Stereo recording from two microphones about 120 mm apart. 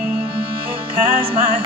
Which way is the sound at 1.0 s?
50° right (ahead or behind).